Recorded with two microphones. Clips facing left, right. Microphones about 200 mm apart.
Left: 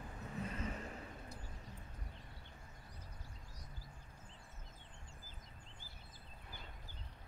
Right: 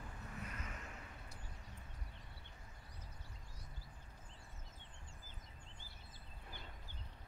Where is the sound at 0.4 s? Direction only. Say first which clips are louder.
Left 9 dB; 30° left (ahead or behind).